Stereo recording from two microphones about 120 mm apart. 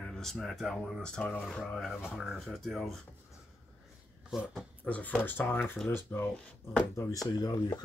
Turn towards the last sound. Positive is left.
turn(degrees=35)  # may be behind; listen again after turning